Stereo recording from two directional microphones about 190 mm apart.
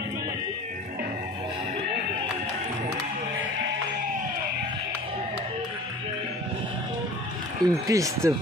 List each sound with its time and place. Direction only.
7.6 s speech: 20° right (ahead or behind)